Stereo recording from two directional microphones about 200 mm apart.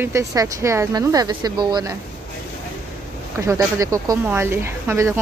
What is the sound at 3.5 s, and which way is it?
Speech, 15° right (ahead or behind).